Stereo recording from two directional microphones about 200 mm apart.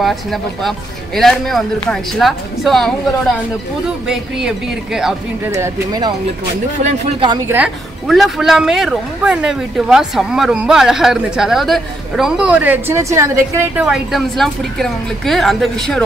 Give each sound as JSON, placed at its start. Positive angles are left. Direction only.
{"t": 0.0, "sound": "a woman's voice", "side_deg": 0}
{"t": 5.5, "sound": "speech", "side_deg": -20}
{"t": 7.4, "sound": "a woman's voice", "side_deg": -5}